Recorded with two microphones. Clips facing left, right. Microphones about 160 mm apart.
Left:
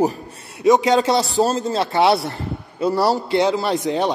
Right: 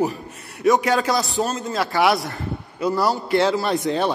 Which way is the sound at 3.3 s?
15° left (ahead or behind).